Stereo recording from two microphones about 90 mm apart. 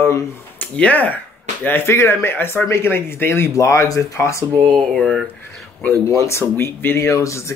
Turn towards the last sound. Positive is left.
turn(degrees=35)  # may be behind; listen again after turning